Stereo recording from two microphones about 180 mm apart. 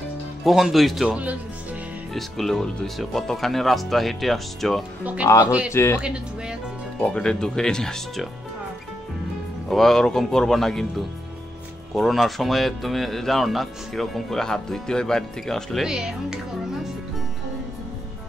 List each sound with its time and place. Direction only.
0.4 s speech: centre (ahead or behind)
5.2 s speech: 15° left (ahead or behind)
6.0 s speech: 5° right (ahead or behind)
7.0 s speech: 5° left (ahead or behind)
9.7 s speech: centre (ahead or behind)